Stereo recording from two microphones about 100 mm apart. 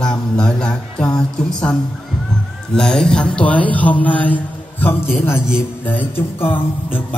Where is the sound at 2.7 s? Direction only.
5° left (ahead or behind).